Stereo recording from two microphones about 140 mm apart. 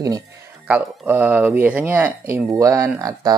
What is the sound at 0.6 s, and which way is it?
Speech, 10° right (ahead or behind).